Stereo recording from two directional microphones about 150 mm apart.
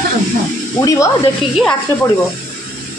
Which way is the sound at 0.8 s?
20° left (ahead or behind).